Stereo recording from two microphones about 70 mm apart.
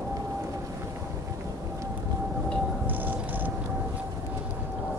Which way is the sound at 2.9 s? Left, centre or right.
Right.